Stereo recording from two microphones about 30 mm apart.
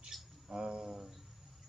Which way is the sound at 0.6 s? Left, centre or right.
Right.